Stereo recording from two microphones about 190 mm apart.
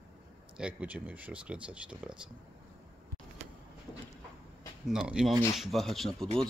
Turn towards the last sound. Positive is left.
turn(degrees=0)  # may be behind; listen again after turning